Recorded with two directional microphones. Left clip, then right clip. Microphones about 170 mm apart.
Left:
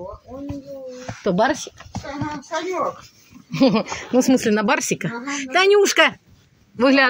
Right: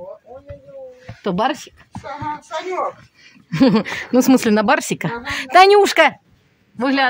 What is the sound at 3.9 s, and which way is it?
A woman's voice, 40° right (ahead or behind).